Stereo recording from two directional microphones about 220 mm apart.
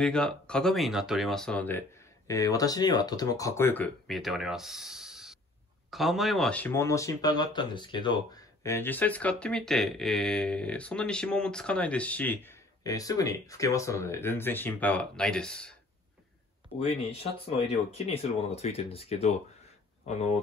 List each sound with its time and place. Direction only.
0.0 s speech: 5° left (ahead or behind)
16.7 s speech: 25° left (ahead or behind)